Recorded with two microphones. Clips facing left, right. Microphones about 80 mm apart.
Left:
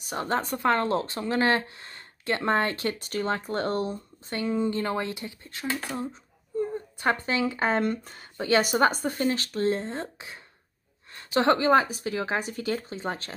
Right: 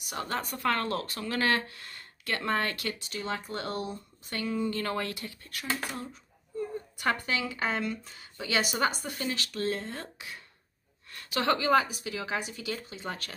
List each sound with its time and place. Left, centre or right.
0.0 s speech: left
3.0 s speech: left